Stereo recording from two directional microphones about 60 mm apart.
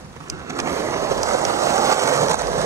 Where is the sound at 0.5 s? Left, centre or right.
Right.